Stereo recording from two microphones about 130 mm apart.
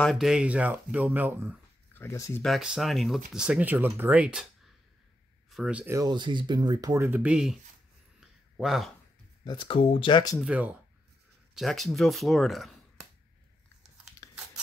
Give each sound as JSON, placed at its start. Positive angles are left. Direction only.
{"t": 0.0, "sound": "speech", "side_deg": 0}
{"t": 2.0, "sound": "speech", "side_deg": 20}
{"t": 2.4, "sound": "speech", "side_deg": 0}
{"t": 5.5, "sound": "speech", "side_deg": -5}
{"t": 5.9, "sound": "speech", "side_deg": -35}
{"t": 7.1, "sound": "speech", "side_deg": -10}
{"t": 8.2, "sound": "a sound", "side_deg": 0}
{"t": 9.4, "sound": "speech", "side_deg": 35}
{"t": 10.4, "sound": "speech", "side_deg": -10}
{"t": 11.5, "sound": "speech", "side_deg": 0}